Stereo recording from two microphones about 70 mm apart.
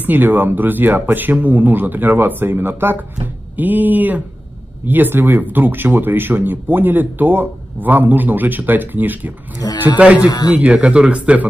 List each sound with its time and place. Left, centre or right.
0.0 s speech: right
9.6 s speech: left
10.2 s a man's voice: left
10.5 s speech: centre